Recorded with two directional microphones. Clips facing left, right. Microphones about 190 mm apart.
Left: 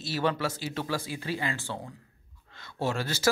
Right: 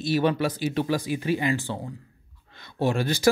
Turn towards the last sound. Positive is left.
turn(degrees=-15)  # may be behind; listen again after turning